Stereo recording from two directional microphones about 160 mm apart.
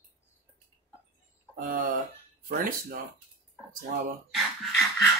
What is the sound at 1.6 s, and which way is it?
Speech, 60° right (ahead or behind).